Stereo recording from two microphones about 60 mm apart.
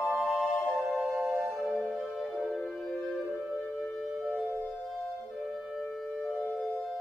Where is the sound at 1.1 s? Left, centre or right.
Right.